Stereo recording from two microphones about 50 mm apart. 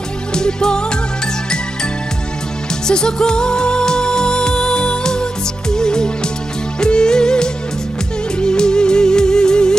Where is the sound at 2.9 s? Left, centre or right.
Centre.